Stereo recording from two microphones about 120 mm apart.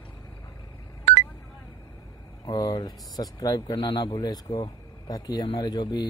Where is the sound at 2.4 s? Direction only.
35° left (ahead or behind).